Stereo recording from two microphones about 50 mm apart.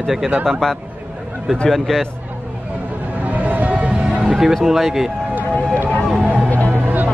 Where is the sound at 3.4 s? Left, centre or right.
Right.